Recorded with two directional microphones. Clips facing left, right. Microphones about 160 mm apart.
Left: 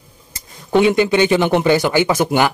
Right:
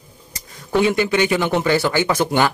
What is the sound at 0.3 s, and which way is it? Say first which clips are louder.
Speech: left 4 dB; 20° left (ahead or behind).